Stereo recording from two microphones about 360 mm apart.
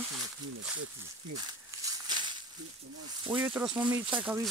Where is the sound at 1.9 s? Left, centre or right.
Centre.